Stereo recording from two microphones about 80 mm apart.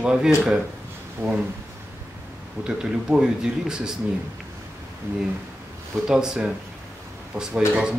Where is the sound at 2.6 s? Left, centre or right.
Centre.